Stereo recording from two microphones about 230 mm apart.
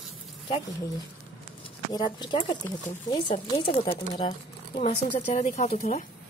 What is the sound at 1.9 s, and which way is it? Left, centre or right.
Speech, centre.